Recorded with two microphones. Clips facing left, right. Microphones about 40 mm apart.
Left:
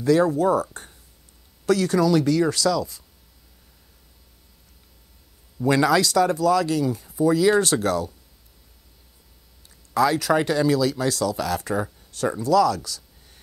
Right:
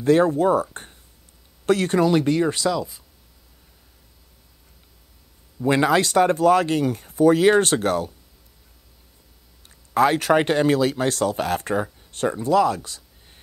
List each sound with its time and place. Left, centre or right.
0.0 s speech: right
1.7 s speech: right
5.7 s speech: right
9.9 s speech: right
11.8 s a sound: right
12.3 s speech: right